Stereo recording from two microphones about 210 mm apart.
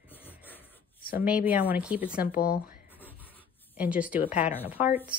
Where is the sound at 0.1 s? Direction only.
10° left (ahead or behind).